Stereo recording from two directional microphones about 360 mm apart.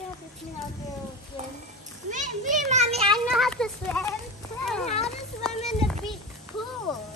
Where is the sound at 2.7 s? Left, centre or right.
Centre.